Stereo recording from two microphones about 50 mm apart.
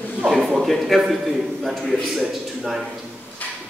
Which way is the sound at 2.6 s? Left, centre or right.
Centre.